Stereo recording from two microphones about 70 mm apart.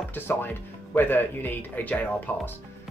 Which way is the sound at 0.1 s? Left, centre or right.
Left.